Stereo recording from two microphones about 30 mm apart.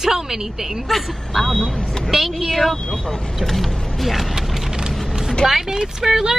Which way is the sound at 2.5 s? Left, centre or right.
Centre.